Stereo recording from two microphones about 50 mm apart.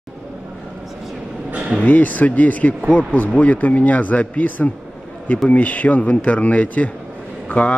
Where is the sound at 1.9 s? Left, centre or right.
Left.